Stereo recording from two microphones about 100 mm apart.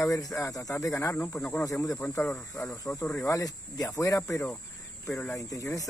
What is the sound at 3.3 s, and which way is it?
Speech, 35° left (ahead or behind).